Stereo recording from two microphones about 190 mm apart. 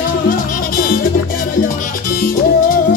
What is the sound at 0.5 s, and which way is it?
Music, 45° left (ahead or behind).